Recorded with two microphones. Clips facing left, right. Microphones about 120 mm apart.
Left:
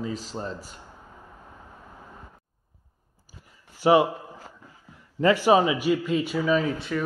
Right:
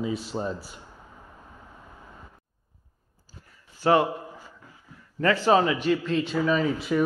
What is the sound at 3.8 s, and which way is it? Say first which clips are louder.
Speech: left 2 dB; 15° left (ahead or behind).